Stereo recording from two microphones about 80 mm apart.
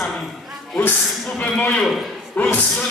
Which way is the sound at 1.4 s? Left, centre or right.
Centre.